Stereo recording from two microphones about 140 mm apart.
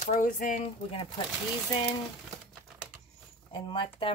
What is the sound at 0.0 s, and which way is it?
Speech, 70° left (ahead or behind).